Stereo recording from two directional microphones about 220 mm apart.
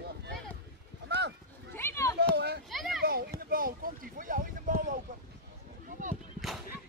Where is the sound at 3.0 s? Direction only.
45° right (ahead or behind).